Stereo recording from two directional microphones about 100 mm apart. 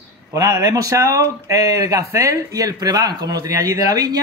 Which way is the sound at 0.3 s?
35° right (ahead or behind).